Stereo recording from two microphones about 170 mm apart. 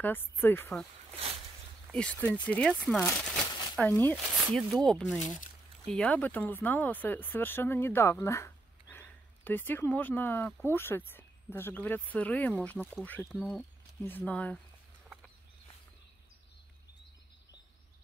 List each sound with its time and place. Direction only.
0.0 s speech: 10° left (ahead or behind)
1.9 s speech: 5° left (ahead or behind)
5.2 s speech: 45° left (ahead or behind)
5.9 s speech: 5° left (ahead or behind)